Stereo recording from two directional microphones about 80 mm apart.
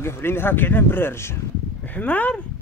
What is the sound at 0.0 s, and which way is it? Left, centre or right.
Speech, left.